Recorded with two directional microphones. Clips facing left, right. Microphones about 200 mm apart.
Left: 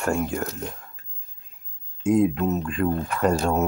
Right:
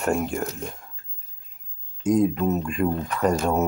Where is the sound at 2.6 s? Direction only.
10° right (ahead or behind).